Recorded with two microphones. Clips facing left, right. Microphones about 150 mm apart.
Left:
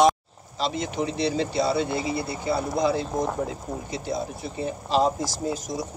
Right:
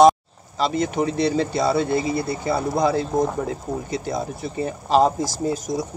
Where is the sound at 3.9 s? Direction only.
50° right (ahead or behind).